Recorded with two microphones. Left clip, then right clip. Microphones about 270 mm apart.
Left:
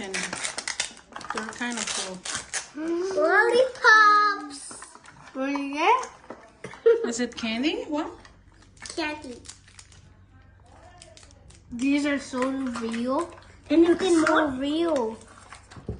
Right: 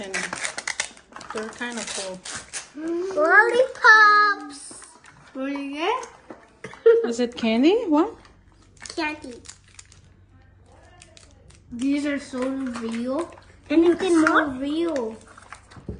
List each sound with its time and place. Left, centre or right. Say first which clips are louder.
0.0 s a sound: right 2 dB; centre
5.2 s speech: left 1 dB; centre
6.6 s speech: right 4 dB; centre
8.7 s a sound: right 3 dB; centre
11.9 s speech: even; centre
12.5 s speech: right 1 dB; centre
14.6 s speech: even; centre